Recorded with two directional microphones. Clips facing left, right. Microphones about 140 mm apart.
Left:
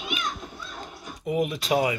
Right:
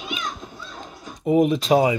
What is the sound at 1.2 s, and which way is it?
Speech, 30° right (ahead or behind).